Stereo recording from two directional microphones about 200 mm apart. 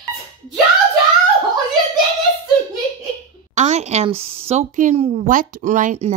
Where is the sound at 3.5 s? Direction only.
35° right (ahead or behind).